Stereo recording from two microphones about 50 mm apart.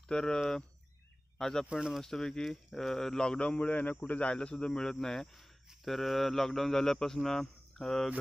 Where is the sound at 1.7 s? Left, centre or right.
Centre.